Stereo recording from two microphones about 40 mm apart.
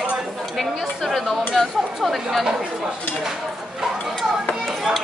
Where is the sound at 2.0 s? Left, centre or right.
Centre.